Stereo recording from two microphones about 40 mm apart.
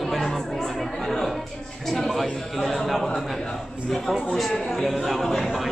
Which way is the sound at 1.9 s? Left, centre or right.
Centre.